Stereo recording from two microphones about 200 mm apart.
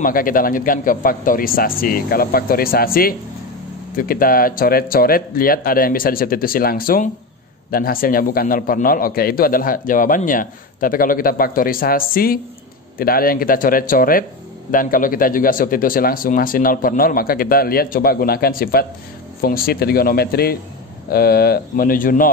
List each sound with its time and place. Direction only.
0.0 s a man's voice: 45° left (ahead or behind)